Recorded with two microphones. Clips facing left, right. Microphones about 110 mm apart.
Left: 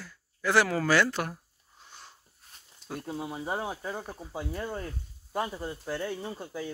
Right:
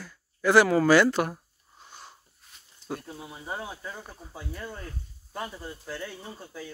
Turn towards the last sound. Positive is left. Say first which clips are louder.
# left 5 dB
turn(degrees=20)  # may be behind; listen again after turning